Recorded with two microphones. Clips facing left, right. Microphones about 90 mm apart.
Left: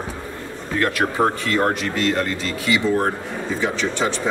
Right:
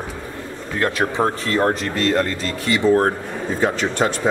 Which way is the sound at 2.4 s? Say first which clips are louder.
Right 1 dB; 40° right (ahead or behind).